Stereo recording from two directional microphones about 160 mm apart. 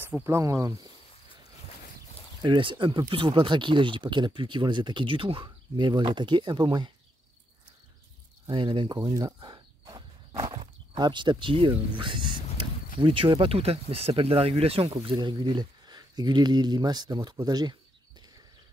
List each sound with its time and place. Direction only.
0.0 s speech: 15° right (ahead or behind)
2.4 s speech: 30° right (ahead or behind)
8.5 s speech: 30° right (ahead or behind)